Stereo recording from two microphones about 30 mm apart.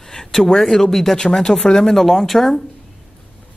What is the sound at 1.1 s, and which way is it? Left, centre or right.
Speech, left.